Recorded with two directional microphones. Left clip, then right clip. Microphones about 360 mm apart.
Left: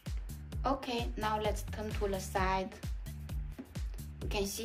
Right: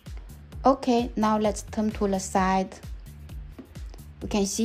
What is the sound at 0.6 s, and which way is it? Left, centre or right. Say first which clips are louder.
A woman's voice: right 13 dB; centre.